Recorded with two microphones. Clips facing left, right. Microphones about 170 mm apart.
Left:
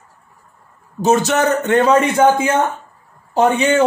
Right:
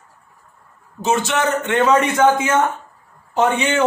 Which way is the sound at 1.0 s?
40° left (ahead or behind).